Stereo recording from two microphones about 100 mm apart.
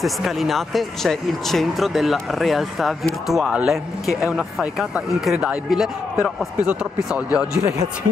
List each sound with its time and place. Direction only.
0.0 s speech: centre (ahead or behind)